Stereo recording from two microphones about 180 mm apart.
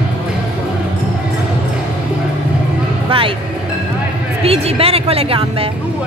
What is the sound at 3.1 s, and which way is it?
Music, 30° right (ahead or behind).